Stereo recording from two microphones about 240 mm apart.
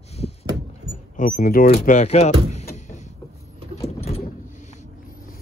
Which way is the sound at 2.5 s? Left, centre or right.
Left.